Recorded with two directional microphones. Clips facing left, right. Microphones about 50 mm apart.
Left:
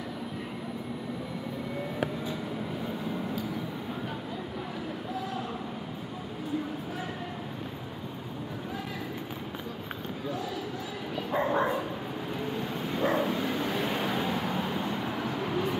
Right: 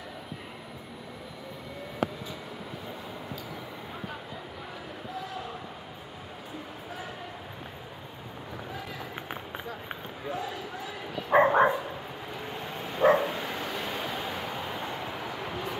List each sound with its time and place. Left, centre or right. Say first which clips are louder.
11.3 s dog: right 7 dB; right
13.0 s dog: right 6 dB; right